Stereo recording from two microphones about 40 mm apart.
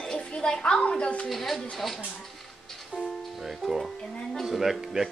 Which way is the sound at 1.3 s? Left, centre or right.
Centre.